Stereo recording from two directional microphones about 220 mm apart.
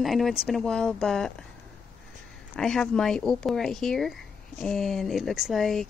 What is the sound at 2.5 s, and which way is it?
Speech, centre (ahead or behind).